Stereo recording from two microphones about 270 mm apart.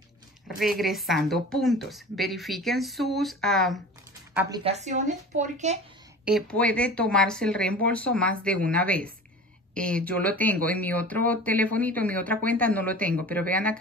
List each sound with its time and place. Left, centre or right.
0.6 s a woman's voice: centre
4.6 s speech: right
6.2 s a woman's voice: centre